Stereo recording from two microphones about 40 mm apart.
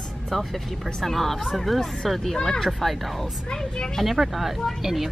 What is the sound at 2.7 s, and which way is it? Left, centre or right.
Speech, centre.